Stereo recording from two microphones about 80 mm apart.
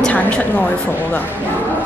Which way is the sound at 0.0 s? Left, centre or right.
Centre.